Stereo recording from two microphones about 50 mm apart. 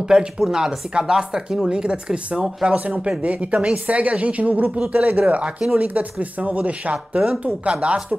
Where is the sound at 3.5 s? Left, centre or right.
Centre.